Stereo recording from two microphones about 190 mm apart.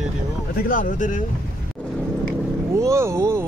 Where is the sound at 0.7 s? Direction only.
45° left (ahead or behind).